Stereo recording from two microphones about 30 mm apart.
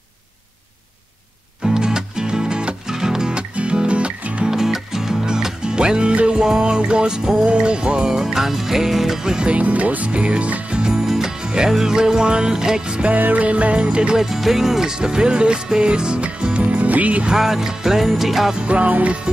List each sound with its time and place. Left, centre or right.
1.6 s music: right
3.5 s music: right
4.5 s music: centre
9.5 s speech: right
10.7 s music: right
11.1 s music: centre
11.4 s music: right
13.1 s music: right
13.5 s speech: right
14.1 s music: centre
15.0 s music: right
16.8 s music: right
17.4 s music: centre
18.7 s speech: right